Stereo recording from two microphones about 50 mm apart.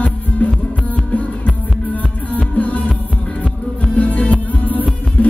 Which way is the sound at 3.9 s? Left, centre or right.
Left.